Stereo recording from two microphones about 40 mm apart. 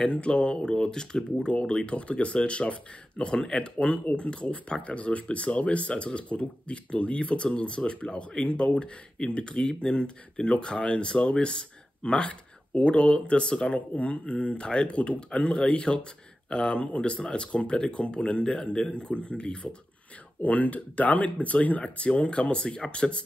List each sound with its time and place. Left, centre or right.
0.0 s speech: left
4.2 s speech: left
13.7 s speech: left
20.4 s speech: left